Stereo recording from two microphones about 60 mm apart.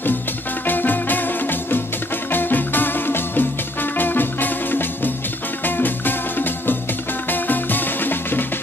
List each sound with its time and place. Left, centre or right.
0.7 s music: left